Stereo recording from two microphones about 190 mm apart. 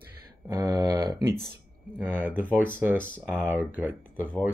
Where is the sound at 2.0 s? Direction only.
10° right (ahead or behind).